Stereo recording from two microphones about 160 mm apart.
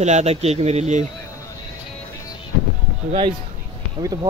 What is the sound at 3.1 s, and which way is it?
Speech, 30° right (ahead or behind).